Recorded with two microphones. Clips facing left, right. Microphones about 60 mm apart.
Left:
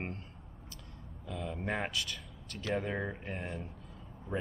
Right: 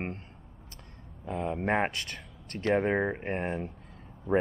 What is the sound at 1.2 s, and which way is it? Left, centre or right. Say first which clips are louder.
Speech: right 8 dB; right.